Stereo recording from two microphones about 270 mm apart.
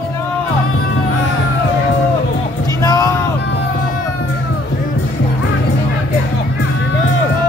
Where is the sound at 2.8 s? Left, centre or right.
Centre.